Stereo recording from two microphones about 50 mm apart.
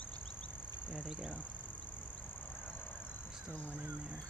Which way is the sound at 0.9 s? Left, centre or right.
Centre.